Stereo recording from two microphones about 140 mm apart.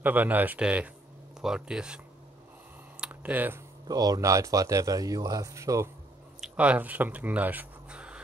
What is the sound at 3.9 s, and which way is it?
Speech, 25° right (ahead or behind).